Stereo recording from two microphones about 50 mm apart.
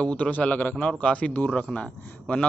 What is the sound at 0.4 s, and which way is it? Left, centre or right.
Speech, left.